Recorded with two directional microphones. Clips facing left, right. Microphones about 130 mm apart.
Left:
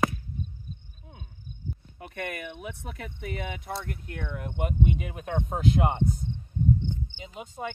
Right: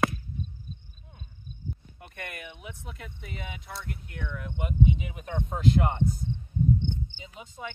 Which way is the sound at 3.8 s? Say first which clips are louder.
Left 2 dB; 55° left (ahead or behind).